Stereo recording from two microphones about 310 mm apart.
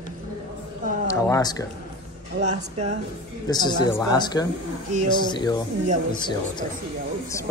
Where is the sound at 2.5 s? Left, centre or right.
Right.